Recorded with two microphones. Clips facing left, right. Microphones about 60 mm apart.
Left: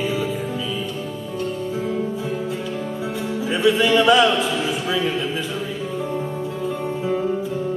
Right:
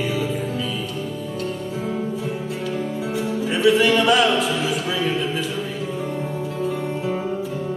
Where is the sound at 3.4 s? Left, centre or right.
Centre.